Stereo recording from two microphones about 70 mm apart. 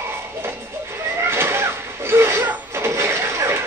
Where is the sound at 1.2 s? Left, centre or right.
Right.